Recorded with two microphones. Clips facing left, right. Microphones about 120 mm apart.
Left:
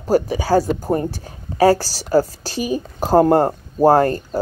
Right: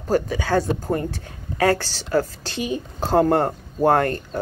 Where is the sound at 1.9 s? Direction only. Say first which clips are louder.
Left 4 dB; 10° left (ahead or behind).